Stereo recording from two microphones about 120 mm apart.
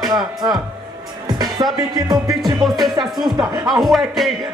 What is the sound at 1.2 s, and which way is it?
Music, 35° right (ahead or behind).